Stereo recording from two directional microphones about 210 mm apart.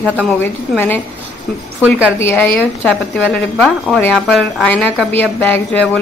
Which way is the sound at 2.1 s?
10° left (ahead or behind).